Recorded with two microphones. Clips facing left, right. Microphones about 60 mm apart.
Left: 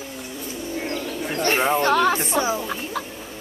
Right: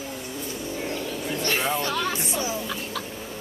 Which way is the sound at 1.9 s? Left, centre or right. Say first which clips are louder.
Left 8 dB; left.